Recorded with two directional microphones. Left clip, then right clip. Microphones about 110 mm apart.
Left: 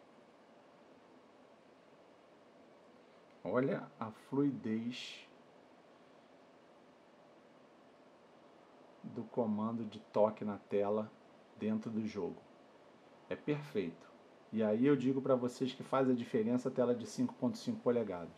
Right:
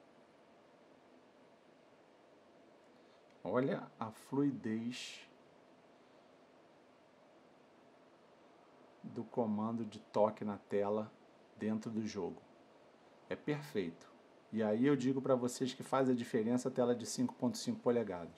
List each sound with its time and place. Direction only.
3.4 s speech: 20° right (ahead or behind)
4.3 s speech: 30° right (ahead or behind)
9.1 s speech: 30° right (ahead or behind)
13.3 s speech: 30° right (ahead or behind)